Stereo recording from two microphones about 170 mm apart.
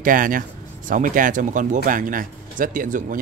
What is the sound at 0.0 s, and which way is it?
Speech, 55° right (ahead or behind).